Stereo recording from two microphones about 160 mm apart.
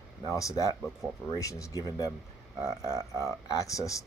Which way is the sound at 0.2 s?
20° left (ahead or behind).